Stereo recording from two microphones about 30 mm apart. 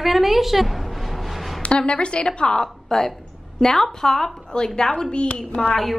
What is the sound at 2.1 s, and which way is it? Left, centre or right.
A woman's voice, left.